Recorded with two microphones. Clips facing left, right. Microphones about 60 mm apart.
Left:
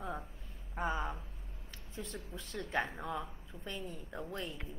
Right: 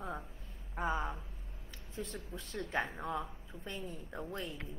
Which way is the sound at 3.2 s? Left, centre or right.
Right.